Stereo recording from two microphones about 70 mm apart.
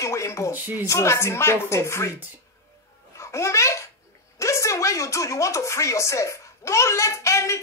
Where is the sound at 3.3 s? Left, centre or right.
Left.